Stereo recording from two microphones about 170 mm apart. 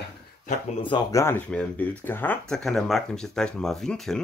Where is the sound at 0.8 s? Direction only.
30° left (ahead or behind).